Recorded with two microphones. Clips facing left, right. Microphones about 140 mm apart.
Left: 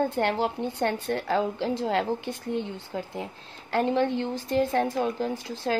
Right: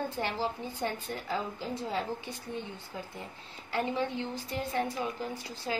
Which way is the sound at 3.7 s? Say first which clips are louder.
Left 8 dB; 80° left.